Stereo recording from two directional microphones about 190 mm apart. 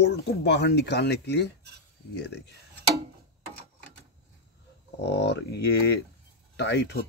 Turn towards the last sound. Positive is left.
turn(degrees=60)  # may be behind; listen again after turning